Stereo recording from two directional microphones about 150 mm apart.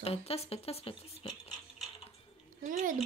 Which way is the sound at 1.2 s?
30° left (ahead or behind).